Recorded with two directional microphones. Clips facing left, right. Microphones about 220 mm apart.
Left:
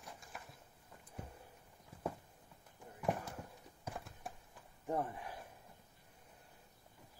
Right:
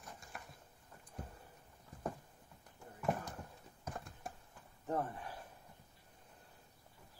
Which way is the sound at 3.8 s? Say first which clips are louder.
Even; 5° left (ahead or behind).